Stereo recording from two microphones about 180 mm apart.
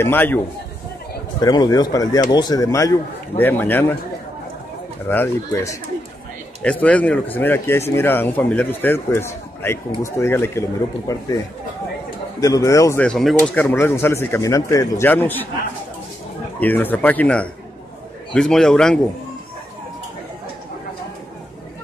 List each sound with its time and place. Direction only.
0.0 s a man's voice: 10° left (ahead or behind)
1.4 s a man's voice: 20° left (ahead or behind)
5.1 s a man's voice: 15° left (ahead or behind)
12.4 s a man's voice: 20° left (ahead or behind)
13.0 s a man's voice: centre (ahead or behind)
16.5 s a man's voice: 10° left (ahead or behind)